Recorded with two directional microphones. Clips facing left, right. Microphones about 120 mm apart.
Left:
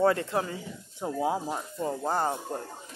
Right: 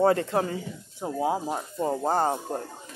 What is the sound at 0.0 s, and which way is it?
Speech, 35° right (ahead or behind).